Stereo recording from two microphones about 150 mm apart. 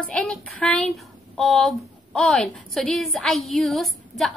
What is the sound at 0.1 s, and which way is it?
A woman's voice, 5° left (ahead or behind).